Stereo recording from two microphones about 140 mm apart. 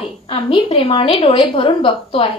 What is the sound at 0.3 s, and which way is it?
A woman's voice, 40° left (ahead or behind).